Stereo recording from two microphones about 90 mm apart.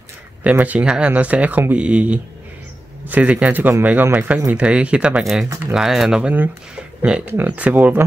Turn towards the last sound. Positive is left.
turn(degrees=-20)  # may be behind; listen again after turning